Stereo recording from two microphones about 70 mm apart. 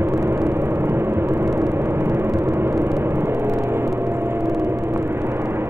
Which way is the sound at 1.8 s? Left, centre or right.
Right.